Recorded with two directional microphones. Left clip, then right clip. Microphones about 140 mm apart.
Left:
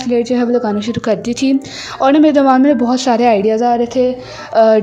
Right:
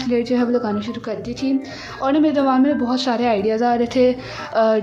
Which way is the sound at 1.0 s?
65° left (ahead or behind).